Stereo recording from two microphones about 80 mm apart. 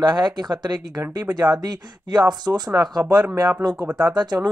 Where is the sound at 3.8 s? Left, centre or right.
Right.